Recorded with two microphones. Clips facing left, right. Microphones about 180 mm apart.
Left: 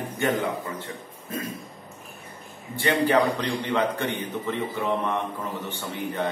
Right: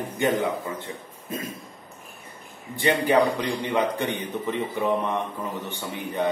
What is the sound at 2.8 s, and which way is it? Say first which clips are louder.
A man's voice: right 1 dB; 15° right (ahead or behind).